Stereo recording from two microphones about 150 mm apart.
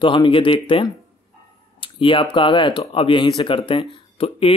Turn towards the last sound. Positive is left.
turn(degrees=40)  # may be behind; listen again after turning